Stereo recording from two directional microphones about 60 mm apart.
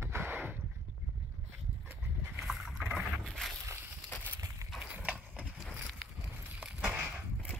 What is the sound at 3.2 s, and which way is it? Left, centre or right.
Boat, centre.